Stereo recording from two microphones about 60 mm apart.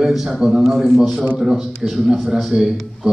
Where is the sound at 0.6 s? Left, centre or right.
Centre.